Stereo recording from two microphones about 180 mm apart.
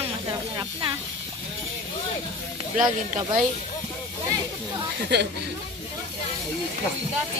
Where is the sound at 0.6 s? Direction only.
25° right (ahead or behind).